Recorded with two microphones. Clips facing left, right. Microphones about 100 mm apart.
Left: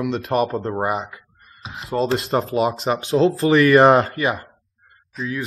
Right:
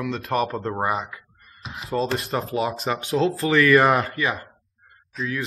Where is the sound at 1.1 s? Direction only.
30° left (ahead or behind).